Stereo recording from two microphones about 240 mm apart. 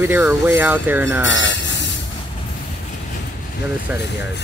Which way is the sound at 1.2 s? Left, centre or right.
Left.